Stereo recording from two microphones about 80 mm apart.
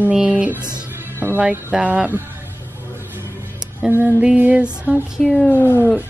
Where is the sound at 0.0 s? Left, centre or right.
Centre.